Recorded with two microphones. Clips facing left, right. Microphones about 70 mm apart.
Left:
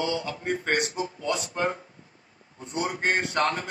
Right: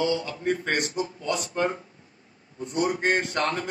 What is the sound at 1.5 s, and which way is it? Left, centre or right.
Speech, left.